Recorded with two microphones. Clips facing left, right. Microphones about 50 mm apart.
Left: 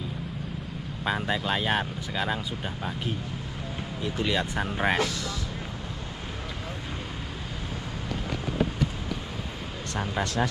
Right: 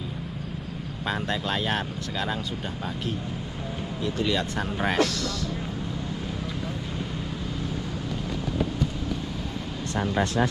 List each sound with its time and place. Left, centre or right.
1.0 s speech: centre
4.0 s speech: centre
10.1 s speech: right